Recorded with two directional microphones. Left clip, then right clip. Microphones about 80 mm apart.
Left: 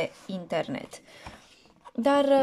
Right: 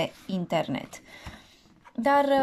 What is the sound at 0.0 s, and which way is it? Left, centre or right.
Speech, centre.